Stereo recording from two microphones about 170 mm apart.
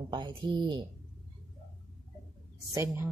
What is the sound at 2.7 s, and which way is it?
Speech, 15° right (ahead or behind).